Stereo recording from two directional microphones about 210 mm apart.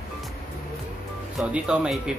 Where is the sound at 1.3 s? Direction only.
5° right (ahead or behind).